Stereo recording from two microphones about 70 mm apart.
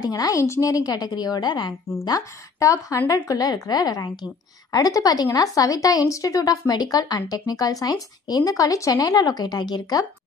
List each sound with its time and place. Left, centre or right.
0.0 s a woman's voice: left
0.4 s a woman's voice: left
2.6 s a woman's voice: left